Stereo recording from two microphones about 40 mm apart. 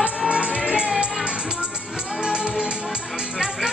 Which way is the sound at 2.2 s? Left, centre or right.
Right.